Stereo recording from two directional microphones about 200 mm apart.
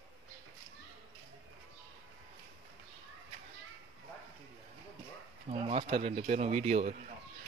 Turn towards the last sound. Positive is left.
turn(degrees=-35)  # may be behind; listen again after turning